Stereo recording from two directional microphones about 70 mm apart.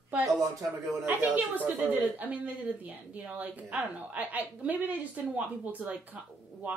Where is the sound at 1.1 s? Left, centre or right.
Right.